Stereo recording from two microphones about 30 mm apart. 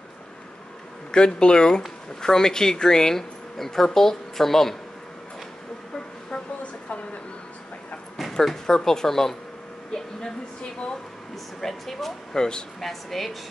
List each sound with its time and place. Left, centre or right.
1.1 s speech: left; by 4.7 s centre
8.2 s a sound: centre
8.6 s speech: centre
10.6 s a woman's voice: left
11.6 s speech: centre
12.3 s speech: left
12.8 s speech: centre